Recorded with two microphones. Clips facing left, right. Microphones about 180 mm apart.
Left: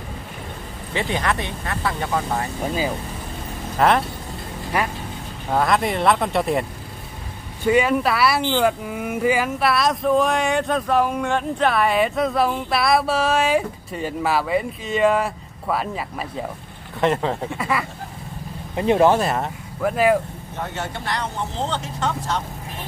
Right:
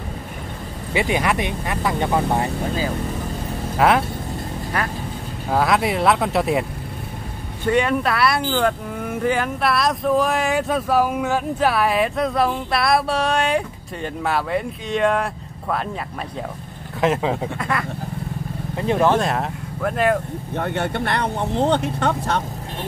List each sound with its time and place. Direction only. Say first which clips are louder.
0.9 s speech: right 3 dB; 10° right (ahead or behind)
3.7 s speech: right 1 dB; 5° right (ahead or behind)
5.5 s speech: right 1 dB; 5° right (ahead or behind)
7.6 s speech: left 1 dB; 5° left (ahead or behind)
17.0 s speech: right 1 dB; 5° right (ahead or behind)
17.6 s speech: left 1 dB; 5° left (ahead or behind)
18.8 s speech: left 3 dB; 20° left (ahead or behind)
19.1 s speech: right 1 dB; centre (ahead or behind)
20.5 s speech: right 6 dB; 60° right (ahead or behind)